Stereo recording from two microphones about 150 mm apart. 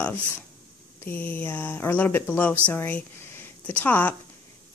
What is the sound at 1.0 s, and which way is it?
A woman's voice, 15° left (ahead or behind).